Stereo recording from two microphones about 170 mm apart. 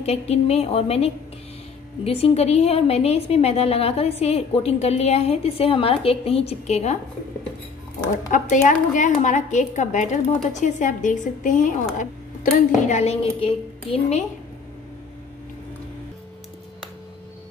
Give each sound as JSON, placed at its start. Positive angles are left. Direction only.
{"t": 0.0, "sound": "a woman's voice", "side_deg": 40}
{"t": 8.3, "sound": "a woman's voice", "side_deg": 50}